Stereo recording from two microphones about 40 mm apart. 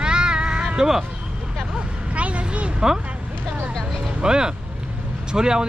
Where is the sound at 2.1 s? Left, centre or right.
Right.